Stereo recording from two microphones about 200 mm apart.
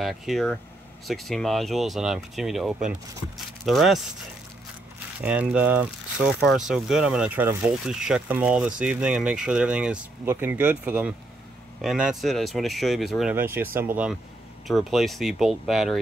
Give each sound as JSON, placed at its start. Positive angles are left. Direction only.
{"t": 0.0, "sound": "speech", "side_deg": 0}
{"t": 5.2, "sound": "speech", "side_deg": -5}